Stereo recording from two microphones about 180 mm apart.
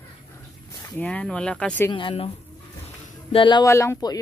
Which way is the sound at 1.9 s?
30° left (ahead or behind).